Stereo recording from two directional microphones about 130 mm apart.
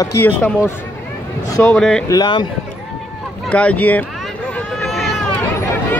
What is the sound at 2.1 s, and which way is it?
Speech, 35° left (ahead or behind).